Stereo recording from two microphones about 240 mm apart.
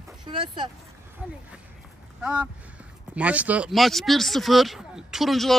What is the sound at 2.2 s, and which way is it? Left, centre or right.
Speech, centre.